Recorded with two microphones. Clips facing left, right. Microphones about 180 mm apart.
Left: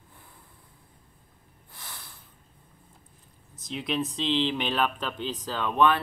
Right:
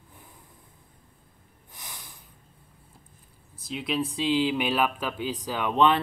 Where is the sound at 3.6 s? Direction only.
5° right (ahead or behind).